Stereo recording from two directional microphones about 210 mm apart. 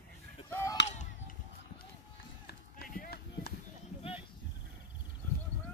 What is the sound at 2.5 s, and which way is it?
Run, 45° left (ahead or behind).